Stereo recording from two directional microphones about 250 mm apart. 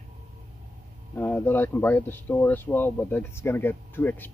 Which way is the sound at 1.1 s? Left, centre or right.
Centre.